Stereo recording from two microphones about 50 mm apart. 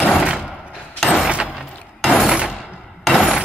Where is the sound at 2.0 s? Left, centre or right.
Centre.